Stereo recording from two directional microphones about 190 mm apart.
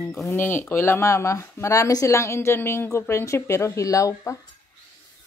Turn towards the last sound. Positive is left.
turn(degrees=15)  # may be behind; listen again after turning